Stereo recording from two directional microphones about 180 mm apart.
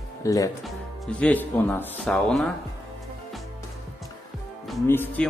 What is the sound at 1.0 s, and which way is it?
Speech, 5° left (ahead or behind).